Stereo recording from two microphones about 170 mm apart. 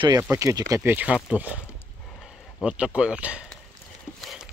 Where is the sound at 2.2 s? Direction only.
5° left (ahead or behind).